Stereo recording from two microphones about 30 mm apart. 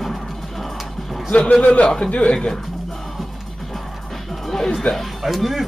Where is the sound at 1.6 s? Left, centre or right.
Left.